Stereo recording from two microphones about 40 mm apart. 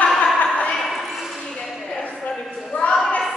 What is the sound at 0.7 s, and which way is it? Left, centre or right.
Ping, centre.